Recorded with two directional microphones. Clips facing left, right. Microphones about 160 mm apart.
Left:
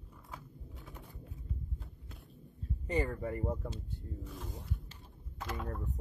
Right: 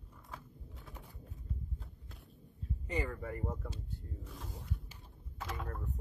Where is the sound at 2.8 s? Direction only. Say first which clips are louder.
Left 4 dB; 35° left (ahead or behind).